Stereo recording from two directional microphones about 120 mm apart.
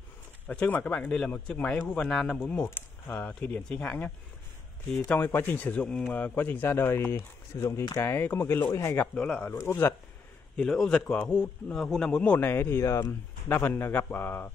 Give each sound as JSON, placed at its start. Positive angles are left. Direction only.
{"t": 0.5, "sound": "speech", "side_deg": 15}
{"t": 9.0, "sound": "speech", "side_deg": 10}
{"t": 9.5, "sound": "speech", "side_deg": 25}
{"t": 10.5, "sound": "a man's voice", "side_deg": 5}